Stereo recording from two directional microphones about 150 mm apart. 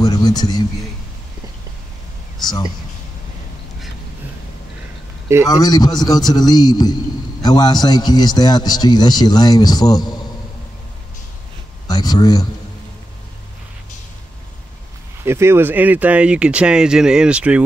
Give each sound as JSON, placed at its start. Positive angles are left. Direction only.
{"t": 0.0, "sound": "a man's voice", "side_deg": 25}
{"t": 2.4, "sound": "a man's voice", "side_deg": 25}
{"t": 5.5, "sound": "a man's voice", "side_deg": 25}
{"t": 11.9, "sound": "a man's voice", "side_deg": 25}
{"t": 15.2, "sound": "speech", "side_deg": -15}